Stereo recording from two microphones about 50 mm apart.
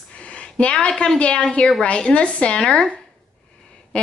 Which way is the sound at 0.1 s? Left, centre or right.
Left.